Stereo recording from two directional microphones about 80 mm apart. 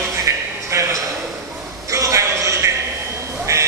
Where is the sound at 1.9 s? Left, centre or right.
Right.